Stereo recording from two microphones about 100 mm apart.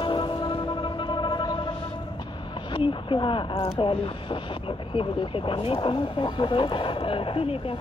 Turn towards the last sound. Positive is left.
turn(degrees=60)  # may be behind; listen again after turning